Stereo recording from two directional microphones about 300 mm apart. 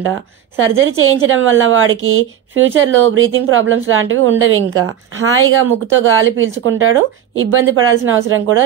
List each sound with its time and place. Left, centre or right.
0.0 s a woman's voice: right